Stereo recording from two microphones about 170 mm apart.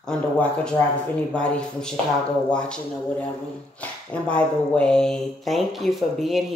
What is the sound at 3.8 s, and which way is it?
Speech, 5° left (ahead or behind).